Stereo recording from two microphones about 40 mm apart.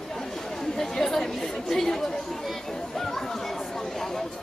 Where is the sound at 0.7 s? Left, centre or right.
Centre.